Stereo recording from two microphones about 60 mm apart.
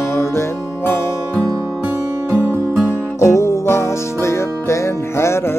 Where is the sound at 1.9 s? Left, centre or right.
Right.